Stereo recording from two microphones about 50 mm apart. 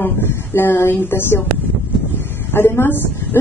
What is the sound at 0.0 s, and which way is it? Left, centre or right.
A woman's voice, left.